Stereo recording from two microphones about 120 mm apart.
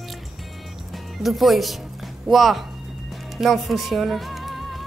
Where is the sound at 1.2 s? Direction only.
Centre (ahead or behind).